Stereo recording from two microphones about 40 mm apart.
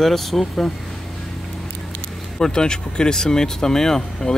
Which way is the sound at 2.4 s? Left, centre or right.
Centre.